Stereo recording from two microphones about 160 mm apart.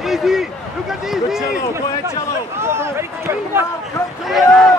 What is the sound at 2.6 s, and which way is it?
Speech, 15° right (ahead or behind).